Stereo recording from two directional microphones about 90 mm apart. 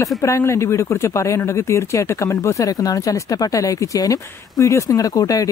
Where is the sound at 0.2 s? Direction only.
30° left (ahead or behind).